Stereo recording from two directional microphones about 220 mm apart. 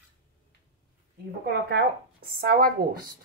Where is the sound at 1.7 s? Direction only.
45° right (ahead or behind).